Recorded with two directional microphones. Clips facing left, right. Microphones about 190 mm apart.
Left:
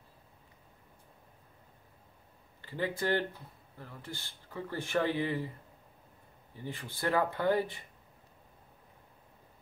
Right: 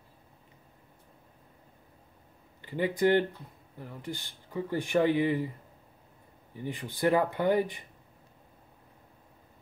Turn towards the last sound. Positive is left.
turn(degrees=-15)  # may be behind; listen again after turning